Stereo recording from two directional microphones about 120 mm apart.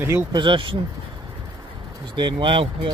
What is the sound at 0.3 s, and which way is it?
Speech, 40° right (ahead or behind).